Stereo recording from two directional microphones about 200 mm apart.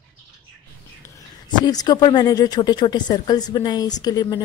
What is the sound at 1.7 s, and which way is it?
Speech, 20° left (ahead or behind).